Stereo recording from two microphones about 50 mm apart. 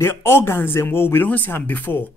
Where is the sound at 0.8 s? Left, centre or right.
Left.